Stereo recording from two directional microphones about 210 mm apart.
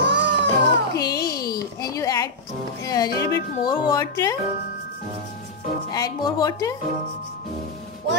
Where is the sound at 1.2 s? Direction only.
45° left (ahead or behind).